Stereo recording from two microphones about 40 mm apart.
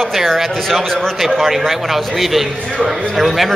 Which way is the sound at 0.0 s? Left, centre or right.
Centre.